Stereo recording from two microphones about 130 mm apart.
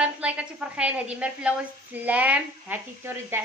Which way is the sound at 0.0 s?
10° right (ahead or behind).